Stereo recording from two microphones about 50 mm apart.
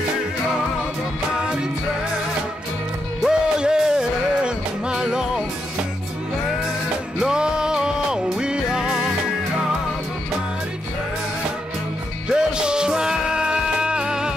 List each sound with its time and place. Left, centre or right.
1.4 s music: centre
3.3 s music: centre
7.2 s music: centre
8.8 s music: centre
12.3 s music: centre